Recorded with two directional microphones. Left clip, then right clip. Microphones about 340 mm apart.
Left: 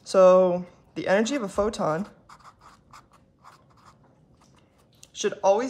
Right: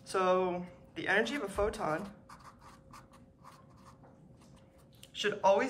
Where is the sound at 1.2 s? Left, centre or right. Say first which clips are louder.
Left 7 dB; centre.